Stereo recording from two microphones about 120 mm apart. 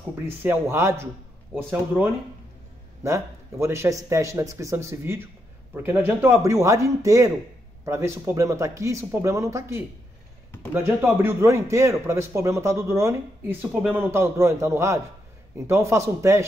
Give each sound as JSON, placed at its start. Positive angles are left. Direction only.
{"t": 0.4, "sound": "a man's voice", "side_deg": -20}
{"t": 2.0, "sound": "speech", "side_deg": 10}
{"t": 3.0, "sound": "a man's voice", "side_deg": -25}